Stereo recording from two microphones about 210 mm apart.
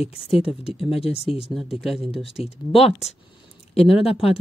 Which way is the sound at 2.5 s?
30° left (ahead or behind).